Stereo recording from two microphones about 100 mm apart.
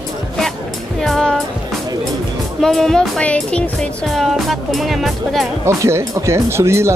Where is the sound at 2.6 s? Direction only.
5° left (ahead or behind).